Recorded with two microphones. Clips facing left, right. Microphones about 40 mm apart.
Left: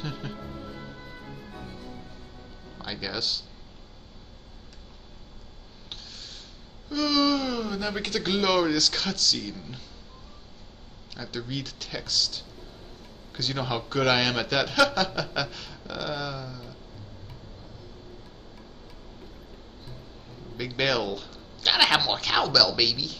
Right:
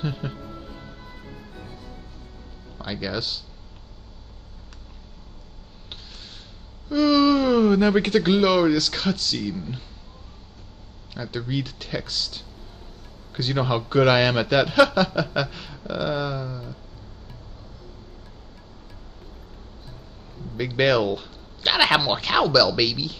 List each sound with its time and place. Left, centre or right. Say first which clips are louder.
0.0 s speech: right 6 dB; centre
2.8 s speech: right 4 dB; centre
6.9 s a sound: right 6 dB; centre
7.5 s speech: right 12 dB; right
8.3 s speech: right 3 dB; centre
11.1 s speech: right 6 dB; centre
20.5 s speech: right 6 dB; centre